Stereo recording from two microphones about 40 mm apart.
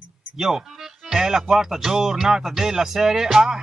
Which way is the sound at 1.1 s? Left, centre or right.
Centre.